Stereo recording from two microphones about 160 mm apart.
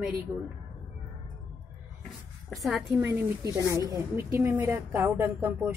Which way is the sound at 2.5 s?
Centre (ahead or behind).